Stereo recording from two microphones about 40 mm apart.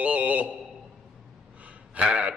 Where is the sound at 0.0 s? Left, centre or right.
Right.